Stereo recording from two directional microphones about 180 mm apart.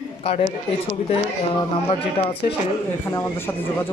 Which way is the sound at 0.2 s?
30° left (ahead or behind).